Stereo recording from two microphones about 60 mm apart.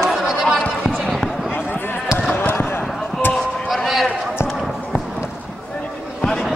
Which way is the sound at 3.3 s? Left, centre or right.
Centre.